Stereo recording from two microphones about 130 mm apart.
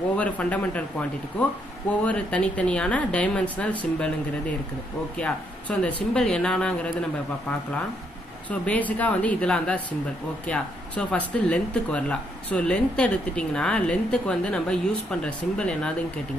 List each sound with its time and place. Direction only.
0.1 s speech: 10° left (ahead or behind)
5.1 s speech: 10° left (ahead or behind)
8.5 s speech: 10° left (ahead or behind)